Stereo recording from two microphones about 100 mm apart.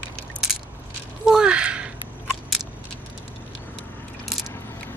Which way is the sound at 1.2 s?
10° right (ahead or behind).